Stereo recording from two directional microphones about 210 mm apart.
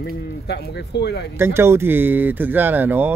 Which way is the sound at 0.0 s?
50° left (ahead or behind).